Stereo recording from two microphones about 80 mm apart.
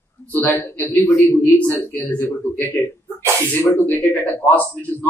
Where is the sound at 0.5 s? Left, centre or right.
Left.